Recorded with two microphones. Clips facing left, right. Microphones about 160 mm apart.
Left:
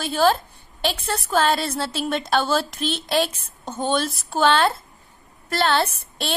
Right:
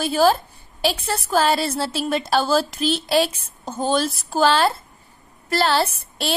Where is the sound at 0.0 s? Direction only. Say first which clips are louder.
Right 2 dB; 5° right (ahead or behind).